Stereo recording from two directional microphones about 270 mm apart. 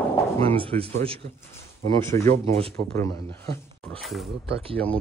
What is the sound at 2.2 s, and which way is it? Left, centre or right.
Speech, right.